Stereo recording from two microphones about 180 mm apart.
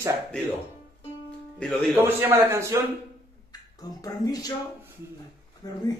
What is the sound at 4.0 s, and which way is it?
Speech, 20° left (ahead or behind).